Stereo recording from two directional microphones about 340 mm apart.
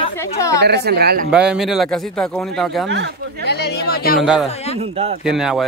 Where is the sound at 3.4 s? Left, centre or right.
Left.